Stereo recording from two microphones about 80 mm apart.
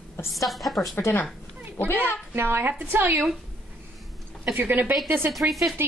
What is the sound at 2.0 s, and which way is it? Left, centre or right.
A woman's voice, right.